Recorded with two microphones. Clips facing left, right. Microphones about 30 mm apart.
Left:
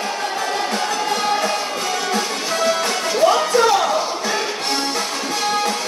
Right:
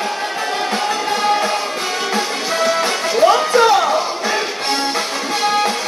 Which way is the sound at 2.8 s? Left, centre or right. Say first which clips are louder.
Right 3 dB; right.